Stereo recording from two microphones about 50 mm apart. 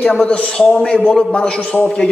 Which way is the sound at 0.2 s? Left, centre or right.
Left.